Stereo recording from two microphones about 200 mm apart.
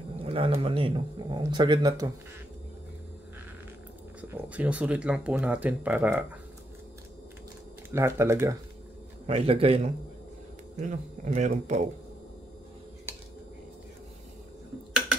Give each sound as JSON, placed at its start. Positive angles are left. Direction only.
{"t": 0.2, "sound": "speech", "side_deg": -30}
{"t": 4.2, "sound": "speech", "side_deg": -5}
{"t": 7.9, "sound": "speech", "side_deg": -10}
{"t": 9.2, "sound": "speech", "side_deg": -30}